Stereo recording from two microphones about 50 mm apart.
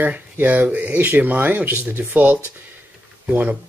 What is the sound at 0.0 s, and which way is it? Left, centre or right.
Speech, right.